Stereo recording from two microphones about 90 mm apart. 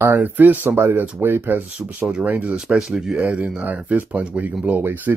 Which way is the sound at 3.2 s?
15° right (ahead or behind).